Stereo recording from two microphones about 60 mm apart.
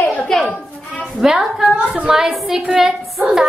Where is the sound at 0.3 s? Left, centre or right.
Centre.